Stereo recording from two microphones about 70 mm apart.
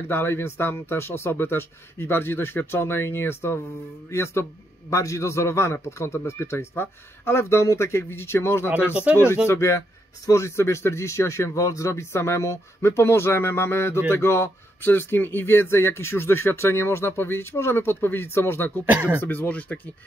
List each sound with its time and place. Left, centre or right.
0.1 s a man's voice: left
18.9 s speech: right
19.2 s speech: left